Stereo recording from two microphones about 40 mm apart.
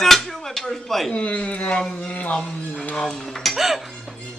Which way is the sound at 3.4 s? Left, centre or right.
Centre.